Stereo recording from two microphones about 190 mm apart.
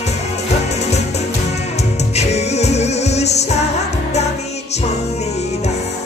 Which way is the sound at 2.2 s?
35° left (ahead or behind).